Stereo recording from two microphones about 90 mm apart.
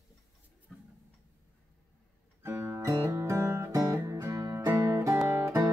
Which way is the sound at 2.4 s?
25° right (ahead or behind).